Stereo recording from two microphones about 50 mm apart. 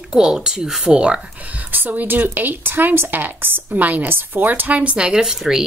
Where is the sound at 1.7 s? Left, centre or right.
Right.